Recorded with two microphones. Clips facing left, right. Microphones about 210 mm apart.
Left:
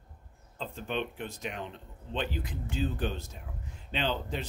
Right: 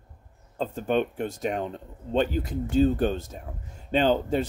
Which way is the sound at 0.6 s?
45° right (ahead or behind).